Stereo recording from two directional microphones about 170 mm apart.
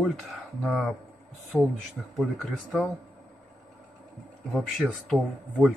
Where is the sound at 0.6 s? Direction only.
5° left (ahead or behind).